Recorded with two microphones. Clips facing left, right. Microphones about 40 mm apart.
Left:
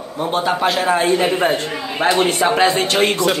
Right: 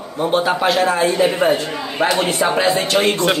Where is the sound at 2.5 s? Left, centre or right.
Left.